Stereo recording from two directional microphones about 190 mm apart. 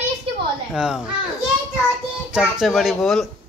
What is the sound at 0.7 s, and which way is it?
Speech, 5° right (ahead or behind).